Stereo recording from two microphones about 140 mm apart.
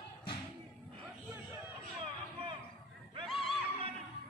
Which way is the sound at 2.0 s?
40° right (ahead or behind).